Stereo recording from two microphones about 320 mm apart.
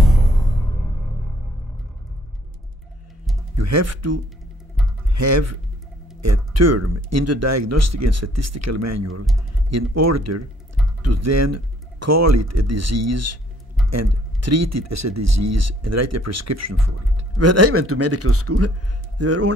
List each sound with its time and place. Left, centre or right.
3.5 s speech: right
5.1 s speech: right